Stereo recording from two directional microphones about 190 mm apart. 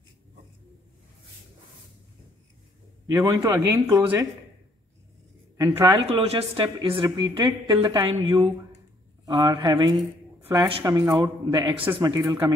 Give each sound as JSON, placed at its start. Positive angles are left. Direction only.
{"t": 3.1, "sound": "speech", "side_deg": -15}
{"t": 5.6, "sound": "speech", "side_deg": -15}
{"t": 6.0, "sound": "speech", "side_deg": -30}
{"t": 8.1, "sound": "speech", "side_deg": -30}
{"t": 9.2, "sound": "speech", "side_deg": -15}